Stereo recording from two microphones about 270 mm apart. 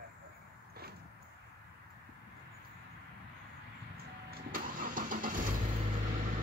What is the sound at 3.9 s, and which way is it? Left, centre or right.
Vehicle, right.